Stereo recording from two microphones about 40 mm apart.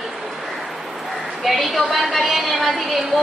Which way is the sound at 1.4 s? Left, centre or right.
Centre.